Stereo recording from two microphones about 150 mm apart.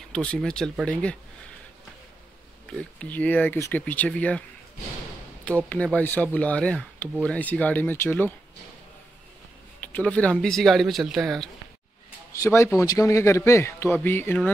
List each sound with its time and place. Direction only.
0.1 s a man's voice: 5° left (ahead or behind)
2.7 s a man's voice: 10° left (ahead or behind)
5.9 s a man's voice: 10° left (ahead or behind)
9.8 s speech: 10° left (ahead or behind)
12.4 s a man's voice: 15° left (ahead or behind)